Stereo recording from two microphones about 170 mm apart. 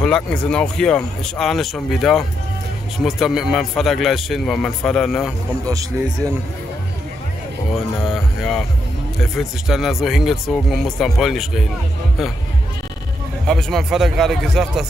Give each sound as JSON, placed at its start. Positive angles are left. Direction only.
{"t": 0.0, "sound": "speech", "side_deg": 5}
{"t": 5.7, "sound": "speech", "side_deg": -20}
{"t": 8.0, "sound": "speech", "side_deg": 0}
{"t": 13.5, "sound": "speech", "side_deg": 0}